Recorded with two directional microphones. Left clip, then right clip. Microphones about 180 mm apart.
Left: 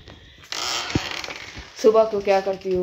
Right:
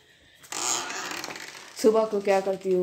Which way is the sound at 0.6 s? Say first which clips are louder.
Left 4 dB; 50° right (ahead or behind).